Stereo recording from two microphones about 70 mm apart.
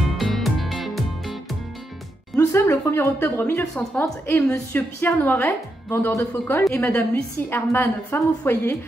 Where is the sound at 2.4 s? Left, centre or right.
Left.